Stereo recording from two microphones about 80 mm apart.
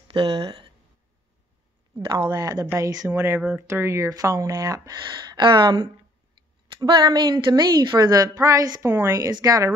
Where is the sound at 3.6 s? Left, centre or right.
Right.